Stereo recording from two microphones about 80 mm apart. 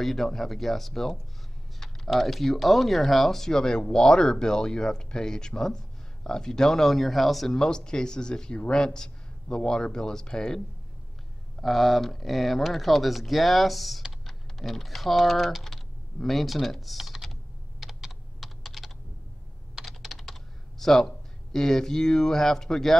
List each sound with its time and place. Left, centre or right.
0.0 s speech: centre
11.6 s speech: centre
19.7 s computer keyboard: centre
20.8 s speech: centre